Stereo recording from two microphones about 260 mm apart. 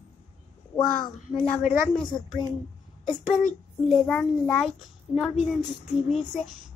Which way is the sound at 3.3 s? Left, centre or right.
Left.